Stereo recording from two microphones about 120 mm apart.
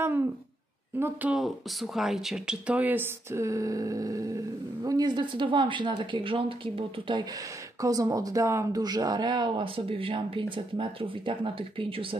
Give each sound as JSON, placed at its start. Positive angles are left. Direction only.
{"t": 0.9, "sound": "speech", "side_deg": -20}
{"t": 1.3, "sound": "speech", "side_deg": 0}
{"t": 7.8, "sound": "speech", "side_deg": -30}